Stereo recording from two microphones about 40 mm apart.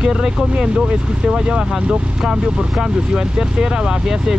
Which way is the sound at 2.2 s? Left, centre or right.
Centre.